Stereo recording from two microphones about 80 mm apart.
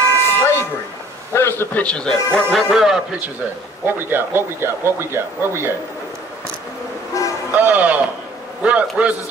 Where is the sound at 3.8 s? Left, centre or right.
Right.